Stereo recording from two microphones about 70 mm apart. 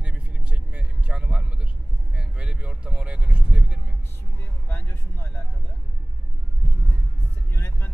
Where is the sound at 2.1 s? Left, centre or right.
Centre.